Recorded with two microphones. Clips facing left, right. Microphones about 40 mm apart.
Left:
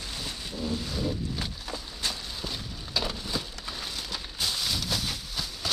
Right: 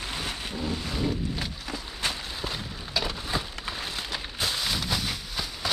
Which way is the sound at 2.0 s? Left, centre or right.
Right.